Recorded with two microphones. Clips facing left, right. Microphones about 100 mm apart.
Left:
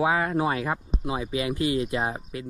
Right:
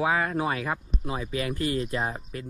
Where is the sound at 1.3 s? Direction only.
40° right (ahead or behind).